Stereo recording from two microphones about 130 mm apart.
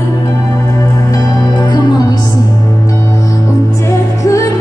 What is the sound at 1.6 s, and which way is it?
Music, 30° left (ahead or behind).